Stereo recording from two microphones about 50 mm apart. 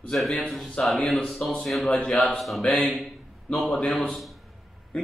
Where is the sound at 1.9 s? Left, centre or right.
Left.